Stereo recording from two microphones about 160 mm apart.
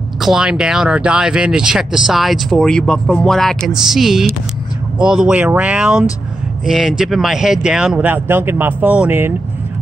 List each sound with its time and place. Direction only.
0.2 s speech: 5° right (ahead or behind)